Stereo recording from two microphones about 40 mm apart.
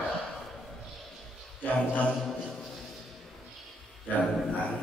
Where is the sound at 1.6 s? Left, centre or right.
Left.